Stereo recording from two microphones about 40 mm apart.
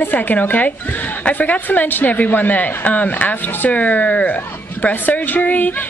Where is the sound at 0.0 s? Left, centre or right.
Left.